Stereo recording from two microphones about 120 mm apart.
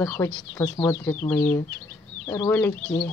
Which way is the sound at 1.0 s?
15° left (ahead or behind).